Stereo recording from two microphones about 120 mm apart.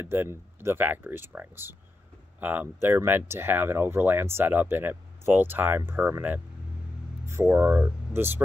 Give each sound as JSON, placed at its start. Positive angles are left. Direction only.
{"t": 0.0, "sound": "speech", "side_deg": -20}